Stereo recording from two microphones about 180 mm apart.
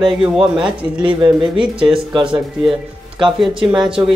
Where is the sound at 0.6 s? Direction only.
25° right (ahead or behind).